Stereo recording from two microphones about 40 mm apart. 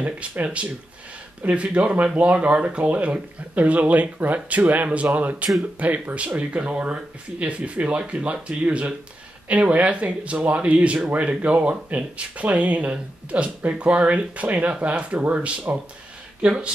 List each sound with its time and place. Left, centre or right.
0.0 s speech: right